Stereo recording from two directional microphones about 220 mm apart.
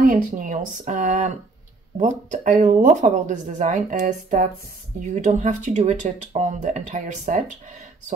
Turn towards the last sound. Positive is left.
turn(degrees=-35)  # may be behind; listen again after turning